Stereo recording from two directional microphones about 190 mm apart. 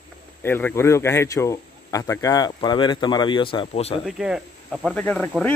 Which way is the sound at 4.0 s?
5° right (ahead or behind).